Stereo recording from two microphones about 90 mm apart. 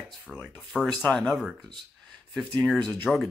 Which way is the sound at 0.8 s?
5° left (ahead or behind).